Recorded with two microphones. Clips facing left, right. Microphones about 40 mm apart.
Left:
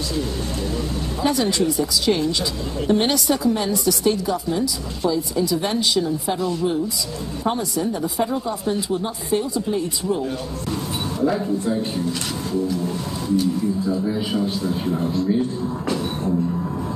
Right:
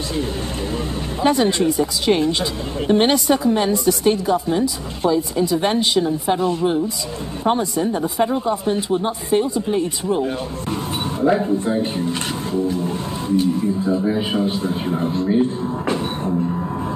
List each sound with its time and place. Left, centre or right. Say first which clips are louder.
1.2 s a woman's voice: right 4 dB; right